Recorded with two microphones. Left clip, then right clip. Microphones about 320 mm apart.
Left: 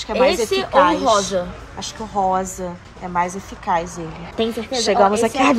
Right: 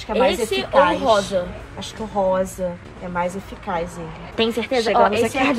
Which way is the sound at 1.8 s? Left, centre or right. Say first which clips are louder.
Left 1 dB; centre.